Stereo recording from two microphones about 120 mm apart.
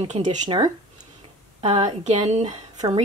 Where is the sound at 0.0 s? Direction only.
75° right (ahead or behind).